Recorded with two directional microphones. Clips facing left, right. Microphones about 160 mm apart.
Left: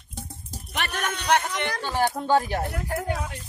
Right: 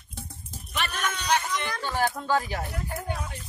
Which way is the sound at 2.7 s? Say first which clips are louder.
Left 5 dB; 80° left.